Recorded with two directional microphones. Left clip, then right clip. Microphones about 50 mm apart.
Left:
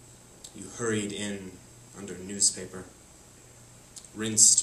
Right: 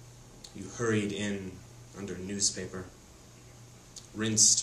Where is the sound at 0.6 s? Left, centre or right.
Right.